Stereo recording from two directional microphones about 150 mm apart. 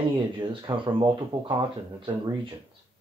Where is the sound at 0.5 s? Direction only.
35° right (ahead or behind).